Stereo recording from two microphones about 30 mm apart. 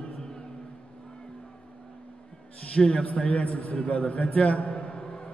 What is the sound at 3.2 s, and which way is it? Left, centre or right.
Speech, left.